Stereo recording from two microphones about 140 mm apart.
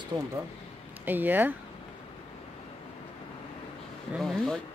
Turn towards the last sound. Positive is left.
turn(degrees=5)  # may be behind; listen again after turning